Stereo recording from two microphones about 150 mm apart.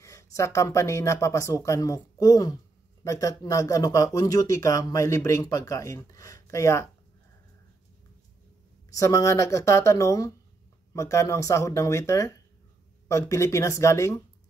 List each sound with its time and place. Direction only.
0.0 s speech: 20° left (ahead or behind)
8.9 s speech: 20° left (ahead or behind)